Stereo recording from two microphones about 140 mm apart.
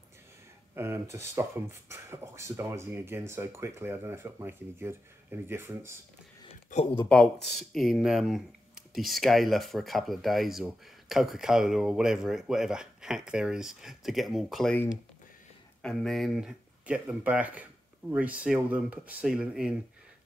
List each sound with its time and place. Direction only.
0.7 s speech: 15° right (ahead or behind)
7.0 s speech: 5° left (ahead or behind)
15.8 s speech: 5° left (ahead or behind)